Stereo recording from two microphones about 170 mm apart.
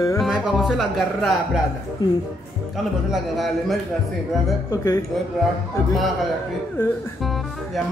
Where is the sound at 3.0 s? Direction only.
Centre (ahead or behind).